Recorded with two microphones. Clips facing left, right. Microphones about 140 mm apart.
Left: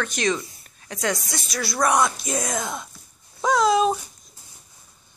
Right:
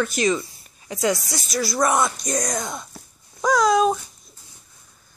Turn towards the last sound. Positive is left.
turn(degrees=0)  # may be behind; listen again after turning